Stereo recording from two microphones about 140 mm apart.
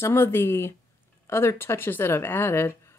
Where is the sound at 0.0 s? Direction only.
15° left (ahead or behind).